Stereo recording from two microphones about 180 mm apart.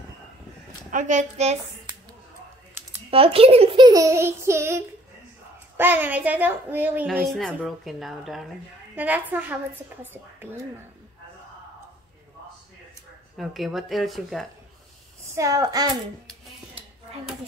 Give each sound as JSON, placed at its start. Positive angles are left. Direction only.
{"t": 0.9, "sound": "a child's voice", "side_deg": -45}
{"t": 3.1, "sound": "a child's voice", "side_deg": -30}
{"t": 13.4, "sound": "a woman's voice", "side_deg": 0}
{"t": 15.3, "sound": "a child's voice", "side_deg": -20}